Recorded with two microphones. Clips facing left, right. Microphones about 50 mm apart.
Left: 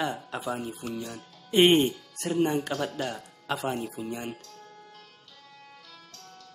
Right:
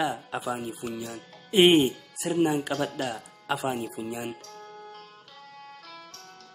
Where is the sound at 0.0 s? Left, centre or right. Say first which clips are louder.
Right 2 dB; centre.